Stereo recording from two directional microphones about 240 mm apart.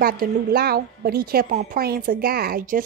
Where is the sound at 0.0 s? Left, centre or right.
Right.